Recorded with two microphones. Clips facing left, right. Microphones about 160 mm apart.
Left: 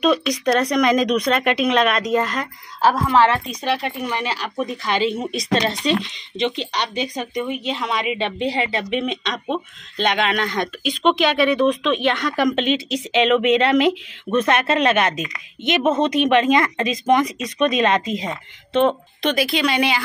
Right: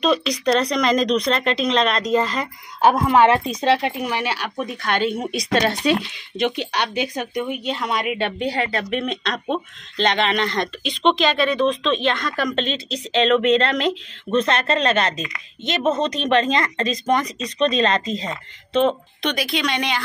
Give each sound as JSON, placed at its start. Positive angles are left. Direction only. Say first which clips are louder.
{"t": 0.0, "sound": "speech", "louder": "left 1 dB", "side_deg": 5}
{"t": 2.8, "sound": "a woman's voice", "louder": "right 1 dB", "side_deg": -20}
{"t": 4.0, "sound": "speech", "louder": "right 1 dB", "side_deg": -5}
{"t": 19.2, "sound": "speech", "louder": "left 3 dB", "side_deg": 0}